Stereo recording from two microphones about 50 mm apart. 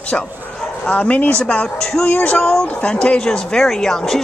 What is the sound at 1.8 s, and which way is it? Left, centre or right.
Speech, centre.